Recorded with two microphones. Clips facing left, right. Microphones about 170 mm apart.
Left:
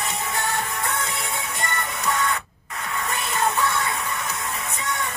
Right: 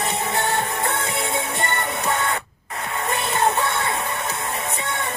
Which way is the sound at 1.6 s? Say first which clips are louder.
Right 4 dB; 30° right (ahead or behind).